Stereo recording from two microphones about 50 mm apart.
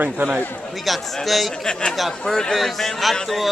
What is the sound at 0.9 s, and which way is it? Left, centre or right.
Speech, centre.